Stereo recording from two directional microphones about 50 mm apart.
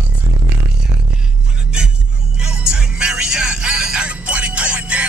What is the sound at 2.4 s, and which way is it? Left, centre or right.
Music, centre.